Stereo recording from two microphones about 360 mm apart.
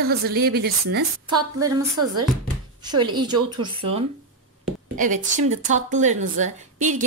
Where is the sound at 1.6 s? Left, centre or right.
Centre.